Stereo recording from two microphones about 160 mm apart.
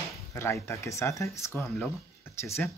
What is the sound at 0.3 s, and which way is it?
Speech, 15° left (ahead or behind).